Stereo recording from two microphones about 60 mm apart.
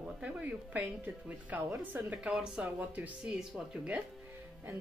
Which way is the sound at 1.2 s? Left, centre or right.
Right.